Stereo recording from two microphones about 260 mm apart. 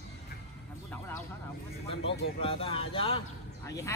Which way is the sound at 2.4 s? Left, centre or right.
Left.